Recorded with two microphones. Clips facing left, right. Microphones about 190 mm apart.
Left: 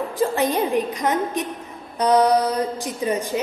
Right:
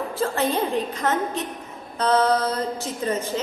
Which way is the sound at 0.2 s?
15° left (ahead or behind).